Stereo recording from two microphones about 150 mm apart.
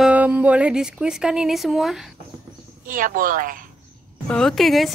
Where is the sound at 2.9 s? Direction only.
65° right (ahead or behind).